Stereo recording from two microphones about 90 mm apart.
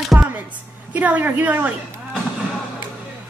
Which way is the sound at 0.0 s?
Centre (ahead or behind).